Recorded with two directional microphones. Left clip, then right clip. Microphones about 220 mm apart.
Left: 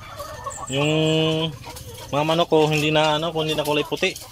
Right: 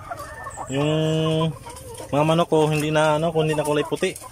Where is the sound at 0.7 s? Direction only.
Centre (ahead or behind).